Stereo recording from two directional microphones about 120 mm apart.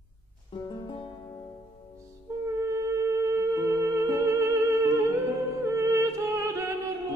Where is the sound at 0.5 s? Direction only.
45° left (ahead or behind).